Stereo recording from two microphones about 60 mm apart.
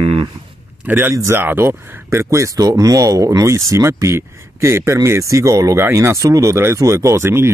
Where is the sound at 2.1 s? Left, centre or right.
Right.